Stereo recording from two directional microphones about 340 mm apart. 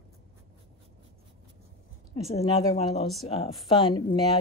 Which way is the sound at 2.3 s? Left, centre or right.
Centre.